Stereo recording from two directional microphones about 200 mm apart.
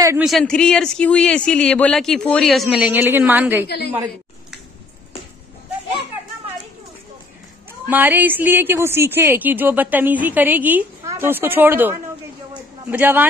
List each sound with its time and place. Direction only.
0.2 s a man's voice: centre (ahead or behind)
3.6 s a woman's voice: 55° left (ahead or behind)
3.9 s a sound: 10° right (ahead or behind)
7.9 s a woman's voice: 10° right (ahead or behind)